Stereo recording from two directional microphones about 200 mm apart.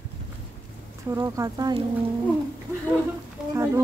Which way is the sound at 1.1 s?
15° right (ahead or behind).